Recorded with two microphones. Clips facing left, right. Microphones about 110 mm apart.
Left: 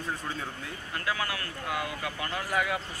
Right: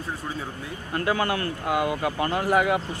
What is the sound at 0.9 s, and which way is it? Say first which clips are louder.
Speech: right 8 dB; 40° right (ahead or behind).